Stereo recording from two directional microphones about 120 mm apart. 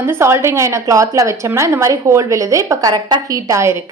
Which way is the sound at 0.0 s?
20° right (ahead or behind).